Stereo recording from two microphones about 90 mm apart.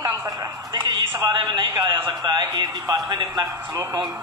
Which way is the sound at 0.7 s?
50° right (ahead or behind).